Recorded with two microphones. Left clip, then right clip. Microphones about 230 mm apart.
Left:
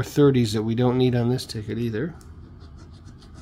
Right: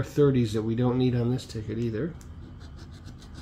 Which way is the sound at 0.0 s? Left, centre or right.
Left.